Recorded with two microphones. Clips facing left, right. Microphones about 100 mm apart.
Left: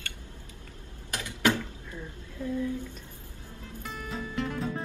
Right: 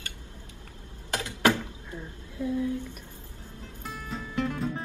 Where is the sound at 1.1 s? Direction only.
25° right (ahead or behind).